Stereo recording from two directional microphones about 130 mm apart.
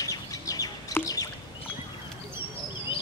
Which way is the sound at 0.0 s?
25° left (ahead or behind).